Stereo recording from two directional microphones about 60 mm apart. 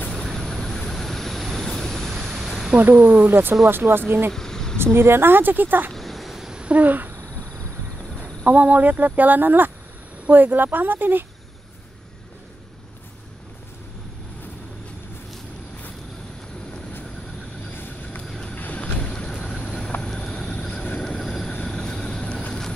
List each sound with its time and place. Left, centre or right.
0.1 s vehicle: centre
2.8 s speech: right
4.3 s insect: centre
4.9 s speech: right
5.9 s a sound: centre
6.7 s a sound: right
8.2 s speech: right
17.6 s cricket: left
18.2 s vehicle: centre
18.5 s boat: left
20.0 s vehicle: centre
21.0 s train: centre